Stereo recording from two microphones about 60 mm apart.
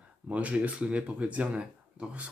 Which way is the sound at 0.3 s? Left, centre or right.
Right.